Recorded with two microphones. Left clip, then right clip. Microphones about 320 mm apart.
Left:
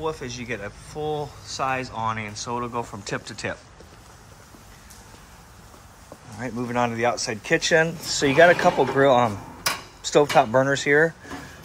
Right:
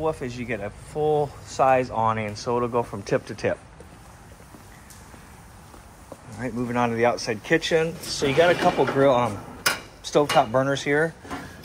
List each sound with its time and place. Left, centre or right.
0.0 s speech: centre
6.3 s speech: centre